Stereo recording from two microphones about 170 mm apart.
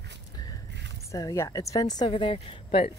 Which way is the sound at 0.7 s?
90° right.